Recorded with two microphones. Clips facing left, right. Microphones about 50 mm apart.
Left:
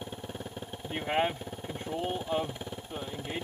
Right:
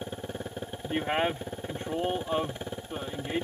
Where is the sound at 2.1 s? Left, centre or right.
Centre.